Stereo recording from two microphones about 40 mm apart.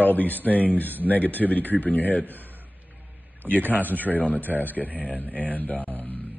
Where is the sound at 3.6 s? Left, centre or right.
Right.